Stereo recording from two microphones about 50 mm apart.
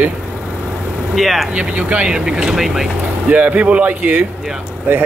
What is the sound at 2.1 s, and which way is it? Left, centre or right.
Speech, centre.